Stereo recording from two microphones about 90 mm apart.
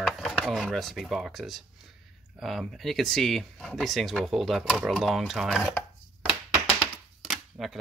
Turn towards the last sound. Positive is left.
turn(degrees=0)  # may be behind; listen again after turning